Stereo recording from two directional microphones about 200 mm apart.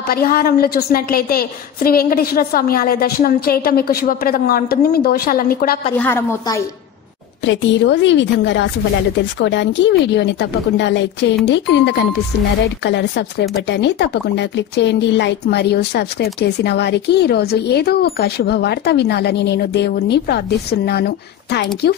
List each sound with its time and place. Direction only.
0.1 s a woman's voice: 50° left (ahead or behind)
5.9 s a woman's voice: 10° left (ahead or behind)
7.4 s speech: 60° left (ahead or behind)